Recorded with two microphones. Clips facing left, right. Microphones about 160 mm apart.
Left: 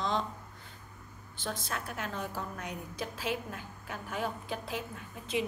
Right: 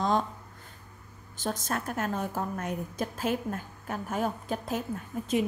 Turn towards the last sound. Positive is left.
turn(degrees=-45)  # may be behind; listen again after turning